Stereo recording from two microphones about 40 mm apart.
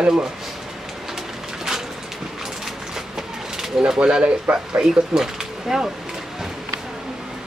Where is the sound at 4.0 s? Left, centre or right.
Right.